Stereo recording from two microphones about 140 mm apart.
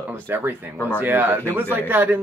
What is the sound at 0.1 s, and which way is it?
A man's voice, 15° right (ahead or behind).